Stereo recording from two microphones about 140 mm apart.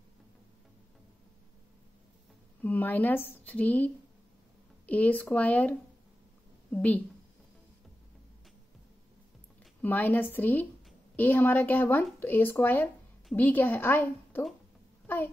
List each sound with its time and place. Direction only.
2.6 s a woman's voice: 15° left (ahead or behind)
9.8 s speech: 10° left (ahead or behind)